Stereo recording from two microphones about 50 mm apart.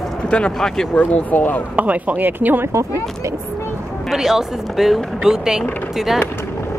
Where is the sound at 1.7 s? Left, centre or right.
Right.